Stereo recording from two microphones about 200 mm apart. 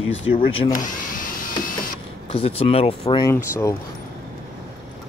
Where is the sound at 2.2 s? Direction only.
30° left (ahead or behind).